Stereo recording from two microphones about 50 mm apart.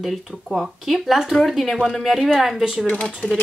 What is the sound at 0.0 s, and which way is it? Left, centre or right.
Speech, centre.